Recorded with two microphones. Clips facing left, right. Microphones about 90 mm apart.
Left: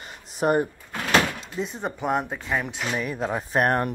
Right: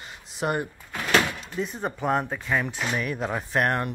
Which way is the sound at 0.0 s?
40° left (ahead or behind).